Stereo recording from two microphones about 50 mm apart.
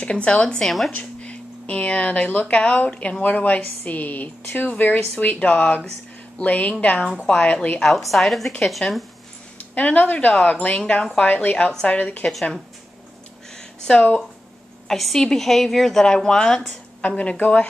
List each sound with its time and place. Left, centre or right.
0.0 s speech: left
0.7 s a woman's voice: centre
0.9 s a woman's voice: left
8.1 s a woman's voice: centre
9.8 s a woman's voice: left
13.6 s a sound: centre
14.9 s a woman's voice: centre
17.0 s speech: left